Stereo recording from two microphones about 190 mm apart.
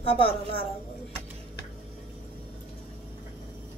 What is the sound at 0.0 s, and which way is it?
Speech, 30° left (ahead or behind).